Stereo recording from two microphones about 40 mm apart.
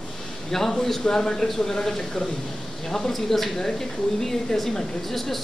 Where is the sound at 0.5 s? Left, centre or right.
Centre.